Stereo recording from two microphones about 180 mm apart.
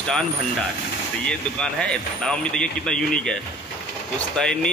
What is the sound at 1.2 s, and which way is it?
Speech, 5° left (ahead or behind).